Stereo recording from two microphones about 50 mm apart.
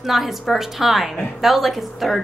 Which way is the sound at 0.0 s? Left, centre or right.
Centre.